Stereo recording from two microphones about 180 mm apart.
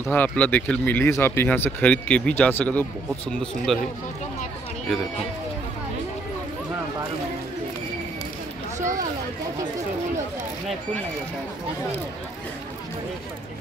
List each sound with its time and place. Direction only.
0.0 s speech: 10° left (ahead or behind)
8.7 s speech: 45° right (ahead or behind)